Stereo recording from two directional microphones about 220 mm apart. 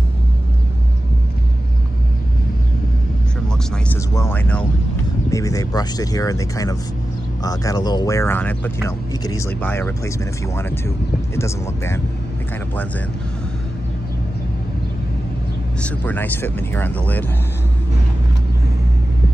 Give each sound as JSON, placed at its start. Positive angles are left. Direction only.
{"t": 3.4, "sound": "music", "side_deg": 10}
{"t": 5.3, "sound": "speech", "side_deg": 15}
{"t": 15.8, "sound": "speech", "side_deg": 10}